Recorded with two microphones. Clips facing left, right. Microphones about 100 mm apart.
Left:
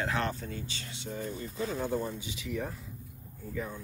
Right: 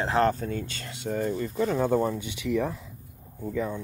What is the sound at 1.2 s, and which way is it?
Speech, 80° right.